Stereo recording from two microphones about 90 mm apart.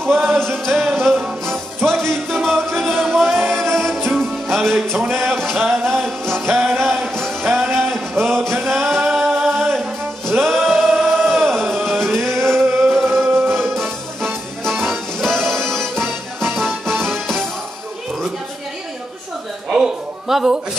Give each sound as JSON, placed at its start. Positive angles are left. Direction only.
{"t": 0.7, "sound": "music", "side_deg": 0}
{"t": 1.4, "sound": "music", "side_deg": -30}
{"t": 1.9, "sound": "music", "side_deg": 5}
{"t": 8.1, "sound": "singing", "side_deg": 5}
{"t": 10.2, "sound": "music", "side_deg": 0}
{"t": 19.7, "sound": "music", "side_deg": -5}